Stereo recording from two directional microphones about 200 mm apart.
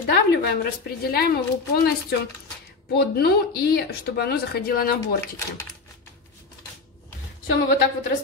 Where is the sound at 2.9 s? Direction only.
50° left (ahead or behind).